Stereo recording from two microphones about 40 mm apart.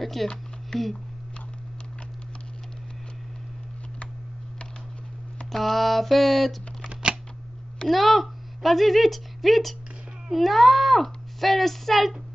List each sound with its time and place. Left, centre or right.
0.0 s a sound: centre
5.5 s speech: centre
6.8 s shuffling cards: right
7.9 s a woman's voice: centre